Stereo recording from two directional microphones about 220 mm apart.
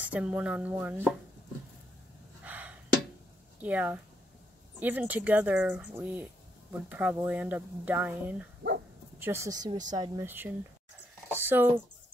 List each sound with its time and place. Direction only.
0.0 s speech: 5° right (ahead or behind)
2.4 s gasp: 5° right (ahead or behind)
3.6 s speech: 5° right (ahead or behind)
11.2 s a sound: 10° right (ahead or behind)